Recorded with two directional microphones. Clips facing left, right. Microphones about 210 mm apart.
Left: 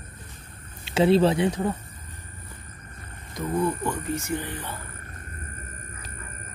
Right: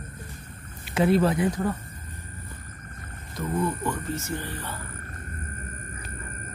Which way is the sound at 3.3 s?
15° left (ahead or behind).